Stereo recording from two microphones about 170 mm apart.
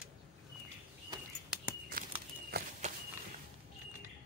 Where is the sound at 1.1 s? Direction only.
25° right (ahead or behind).